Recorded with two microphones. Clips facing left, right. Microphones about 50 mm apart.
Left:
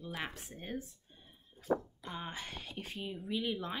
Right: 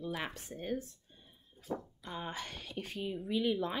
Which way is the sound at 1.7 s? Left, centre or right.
Left.